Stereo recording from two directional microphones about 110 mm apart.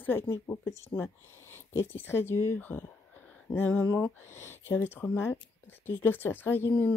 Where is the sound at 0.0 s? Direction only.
20° left (ahead or behind).